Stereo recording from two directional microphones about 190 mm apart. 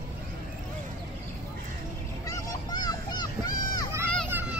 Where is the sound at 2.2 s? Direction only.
20° left (ahead or behind).